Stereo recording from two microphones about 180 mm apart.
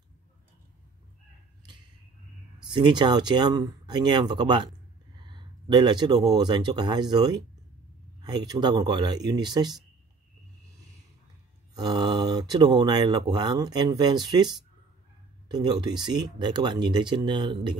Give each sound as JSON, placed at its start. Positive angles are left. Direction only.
{"t": 2.7, "sound": "speech", "side_deg": -25}
{"t": 11.7, "sound": "speech", "side_deg": -20}